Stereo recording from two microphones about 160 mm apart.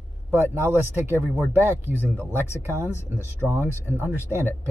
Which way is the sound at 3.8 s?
10° right (ahead or behind).